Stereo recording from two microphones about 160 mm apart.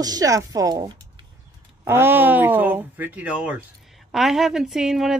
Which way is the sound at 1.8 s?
15° right (ahead or behind).